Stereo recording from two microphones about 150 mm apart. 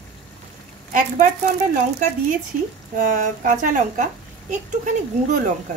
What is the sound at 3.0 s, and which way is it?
Speech, 60° right (ahead or behind).